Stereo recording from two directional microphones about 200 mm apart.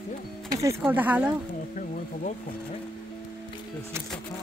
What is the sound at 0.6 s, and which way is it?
Speech, 15° right (ahead or behind).